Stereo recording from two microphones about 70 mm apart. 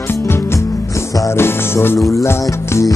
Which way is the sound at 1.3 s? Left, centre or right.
Left.